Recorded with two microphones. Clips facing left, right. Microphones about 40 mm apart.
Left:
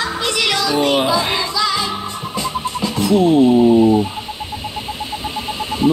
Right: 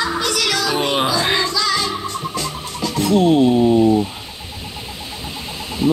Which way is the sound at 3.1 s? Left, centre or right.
Right.